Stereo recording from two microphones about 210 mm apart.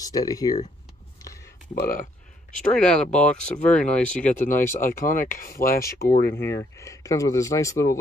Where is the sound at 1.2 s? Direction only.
15° left (ahead or behind).